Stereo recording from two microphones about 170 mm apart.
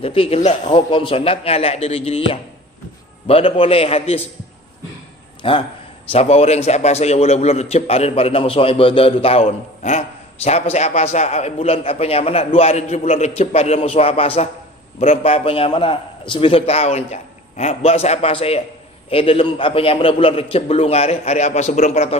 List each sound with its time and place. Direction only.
0.0 s a man's voice: 35° left (ahead or behind)
5.4 s a man's voice: 30° left (ahead or behind)